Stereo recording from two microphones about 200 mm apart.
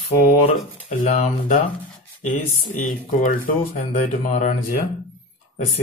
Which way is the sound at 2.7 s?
40° left (ahead or behind).